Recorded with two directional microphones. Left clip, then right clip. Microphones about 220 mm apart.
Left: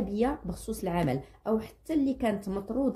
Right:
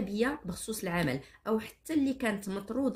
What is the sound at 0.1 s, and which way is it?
Speech, 30° right (ahead or behind).